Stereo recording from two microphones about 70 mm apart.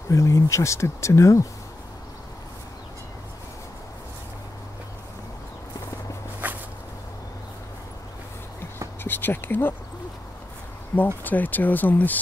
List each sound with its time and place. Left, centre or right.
0.1 s speech: left
6.4 s walk: right
9.0 s a sound: left
11.2 s speech: left